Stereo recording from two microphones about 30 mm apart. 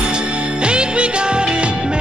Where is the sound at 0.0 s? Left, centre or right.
Right.